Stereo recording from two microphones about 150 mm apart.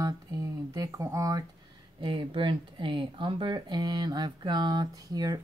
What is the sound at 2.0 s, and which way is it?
Speech, 35° right (ahead or behind).